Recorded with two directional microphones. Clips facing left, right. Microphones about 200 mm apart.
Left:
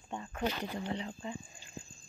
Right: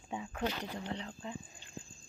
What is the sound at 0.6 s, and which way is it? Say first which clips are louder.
Speech: left 3 dB; 5° left (ahead or behind).